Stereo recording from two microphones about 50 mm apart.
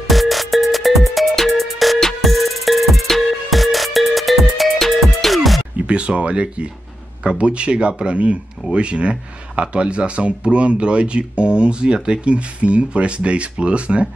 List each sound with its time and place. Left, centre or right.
0.0 s music: centre
5.9 s speech: right